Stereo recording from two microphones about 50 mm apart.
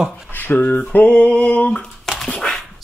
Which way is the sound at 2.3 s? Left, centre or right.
Centre.